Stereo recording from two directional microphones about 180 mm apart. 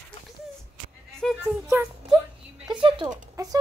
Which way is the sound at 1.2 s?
Centre (ahead or behind).